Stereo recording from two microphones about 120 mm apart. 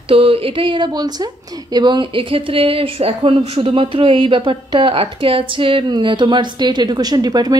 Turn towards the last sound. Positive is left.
turn(degrees=-35)  # may be behind; listen again after turning